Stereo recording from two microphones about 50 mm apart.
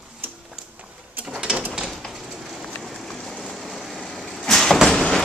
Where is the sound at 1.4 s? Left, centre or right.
Centre.